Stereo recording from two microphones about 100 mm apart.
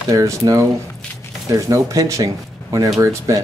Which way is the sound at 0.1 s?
35° right (ahead or behind).